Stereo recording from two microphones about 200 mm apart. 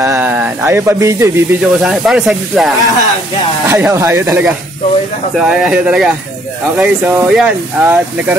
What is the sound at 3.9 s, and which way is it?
Speech, 15° right (ahead or behind).